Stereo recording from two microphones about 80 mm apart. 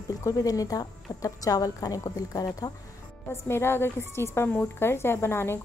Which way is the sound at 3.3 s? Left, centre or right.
Left.